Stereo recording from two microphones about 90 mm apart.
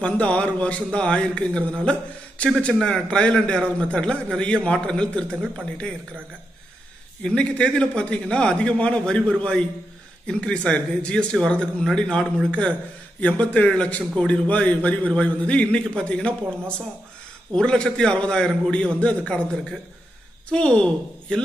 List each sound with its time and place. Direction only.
0.0 s a man's voice: 15° left (ahead or behind)
5.3 s speech: 20° right (ahead or behind)
7.2 s a man's voice: 10° left (ahead or behind)
20.4 s a woman's voice: 10° left (ahead or behind)